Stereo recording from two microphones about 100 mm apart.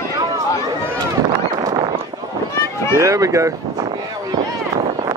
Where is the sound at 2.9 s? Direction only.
30° right (ahead or behind).